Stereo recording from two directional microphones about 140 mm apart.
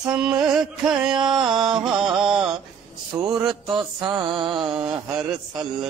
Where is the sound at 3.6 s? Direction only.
35° right (ahead or behind).